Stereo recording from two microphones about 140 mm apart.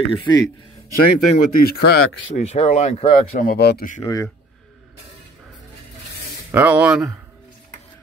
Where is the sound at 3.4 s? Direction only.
85° left.